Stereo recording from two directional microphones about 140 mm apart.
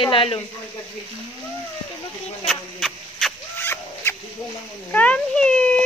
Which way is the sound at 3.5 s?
15° left (ahead or behind).